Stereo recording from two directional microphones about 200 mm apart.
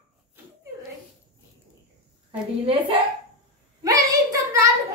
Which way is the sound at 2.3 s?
25° right (ahead or behind).